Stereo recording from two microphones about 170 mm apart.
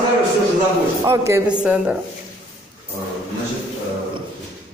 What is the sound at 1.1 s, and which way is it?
Speech, 15° right (ahead or behind).